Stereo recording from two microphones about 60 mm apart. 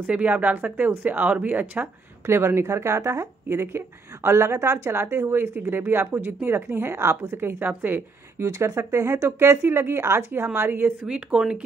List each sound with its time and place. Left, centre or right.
0.0 s speech: right
2.2 s a woman's voice: right
7.3 s a woman's voice: right
8.5 s a woman's voice: right
11.1 s speech: centre